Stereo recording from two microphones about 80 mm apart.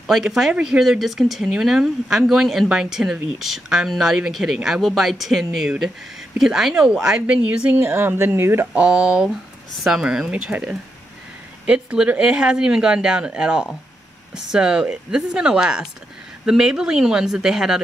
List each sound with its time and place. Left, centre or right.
0.0 s speech: centre
7.8 s speech: right
8.7 s speech: centre